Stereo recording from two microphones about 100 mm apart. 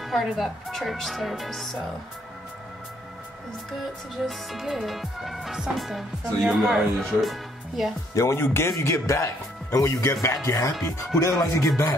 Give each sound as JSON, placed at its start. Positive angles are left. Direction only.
{"t": 0.0, "sound": "music", "side_deg": 0}
{"t": 4.3, "sound": "music", "side_deg": 0}
{"t": 8.1, "sound": "speech", "side_deg": 30}